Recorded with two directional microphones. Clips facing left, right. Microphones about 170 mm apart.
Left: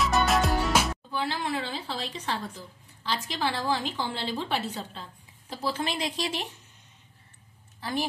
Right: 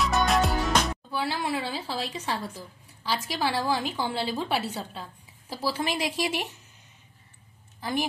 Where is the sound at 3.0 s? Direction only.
10° right (ahead or behind).